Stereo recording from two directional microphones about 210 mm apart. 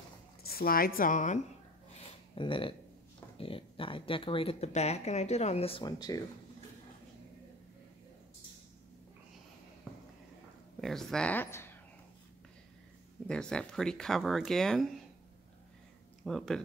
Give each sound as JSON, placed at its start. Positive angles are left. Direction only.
{"t": 0.4, "sound": "speech", "side_deg": 45}
{"t": 2.0, "sound": "a sound", "side_deg": 25}
{"t": 3.3, "sound": "speech", "side_deg": 25}
{"t": 9.9, "sound": "a sound", "side_deg": 5}
{"t": 10.8, "sound": "speech", "side_deg": 0}
{"t": 13.3, "sound": "speech", "side_deg": 5}
{"t": 16.3, "sound": "speech", "side_deg": 0}